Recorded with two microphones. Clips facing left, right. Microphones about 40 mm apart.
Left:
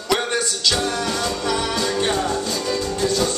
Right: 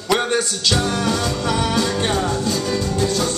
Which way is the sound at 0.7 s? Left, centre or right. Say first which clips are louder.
Right 2 dB; right.